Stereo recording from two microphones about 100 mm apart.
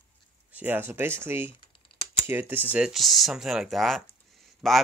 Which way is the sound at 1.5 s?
60° left (ahead or behind).